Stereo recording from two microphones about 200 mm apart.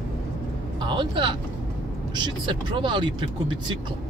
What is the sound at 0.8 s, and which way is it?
Speech, 25° right (ahead or behind).